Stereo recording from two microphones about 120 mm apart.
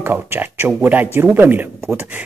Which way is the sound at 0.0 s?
20° right (ahead or behind).